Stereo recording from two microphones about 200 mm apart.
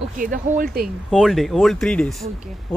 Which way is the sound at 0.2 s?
45° right (ahead or behind).